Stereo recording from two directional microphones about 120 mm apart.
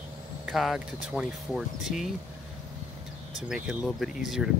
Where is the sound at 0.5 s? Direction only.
Centre (ahead or behind).